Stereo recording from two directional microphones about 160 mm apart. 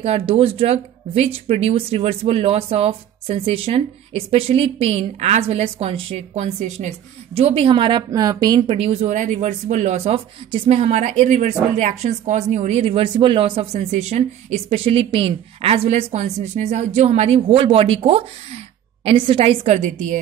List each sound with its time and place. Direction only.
0.0 s a woman's voice: 40° right (ahead or behind)